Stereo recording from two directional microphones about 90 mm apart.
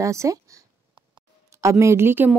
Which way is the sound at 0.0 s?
35° right (ahead or behind).